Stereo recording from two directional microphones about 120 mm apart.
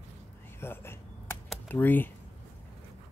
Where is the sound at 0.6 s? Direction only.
20° left (ahead or behind).